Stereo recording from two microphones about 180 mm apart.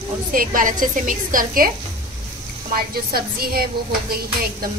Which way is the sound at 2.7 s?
55° right (ahead or behind).